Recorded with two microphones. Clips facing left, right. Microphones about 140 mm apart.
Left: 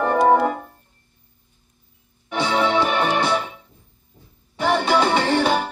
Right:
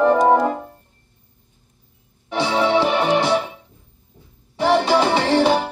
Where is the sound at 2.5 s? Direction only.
30° right (ahead or behind).